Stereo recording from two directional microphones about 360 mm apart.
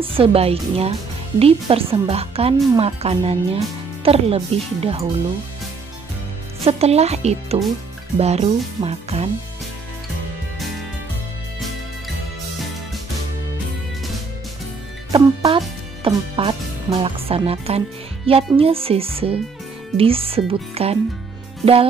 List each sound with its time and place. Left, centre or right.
0.0 s a woman's voice: centre
6.6 s a woman's voice: centre
15.0 s music: centre
16.0 s a woman's voice: centre